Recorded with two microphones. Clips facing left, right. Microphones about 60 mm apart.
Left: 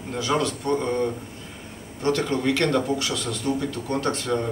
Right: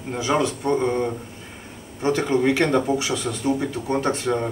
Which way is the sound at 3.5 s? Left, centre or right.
Centre.